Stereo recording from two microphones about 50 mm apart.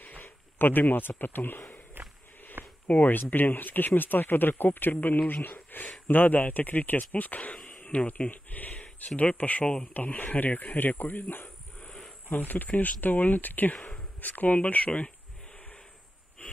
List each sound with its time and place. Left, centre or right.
0.0 s speech: left
2.0 s walk: right
2.6 s speech: left